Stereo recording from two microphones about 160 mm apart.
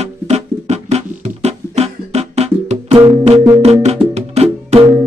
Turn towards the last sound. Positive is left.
turn(degrees=-40)  # may be behind; listen again after turning